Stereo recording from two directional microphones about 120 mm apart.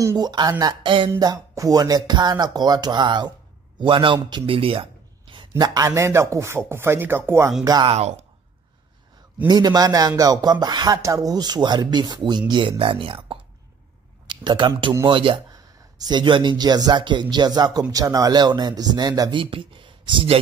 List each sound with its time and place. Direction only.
0.0 s speech: 30° right (ahead or behind)
0.8 s speech: 45° right (ahead or behind)
1.2 s a man's voice: 30° right (ahead or behind)
5.6 s speech: 30° right (ahead or behind)
7.6 s speech: 35° right (ahead or behind)
7.9 s speech: 60° right (ahead or behind)
9.5 s speech: 35° right (ahead or behind)
15.5 s speech: 35° right (ahead or behind)
19.3 s speech: 45° right (ahead or behind)